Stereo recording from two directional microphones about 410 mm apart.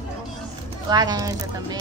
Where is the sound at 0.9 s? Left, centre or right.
Centre.